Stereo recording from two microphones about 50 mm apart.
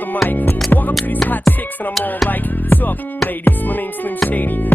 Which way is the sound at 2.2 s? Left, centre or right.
Left.